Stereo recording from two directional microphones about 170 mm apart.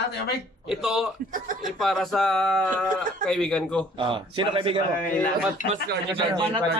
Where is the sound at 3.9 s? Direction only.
30° right (ahead or behind).